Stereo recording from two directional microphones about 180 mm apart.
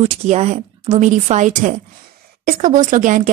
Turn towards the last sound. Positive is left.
turn(degrees=-45)  # may be behind; listen again after turning